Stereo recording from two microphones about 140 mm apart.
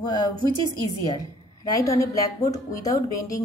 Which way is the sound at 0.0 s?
30° left (ahead or behind).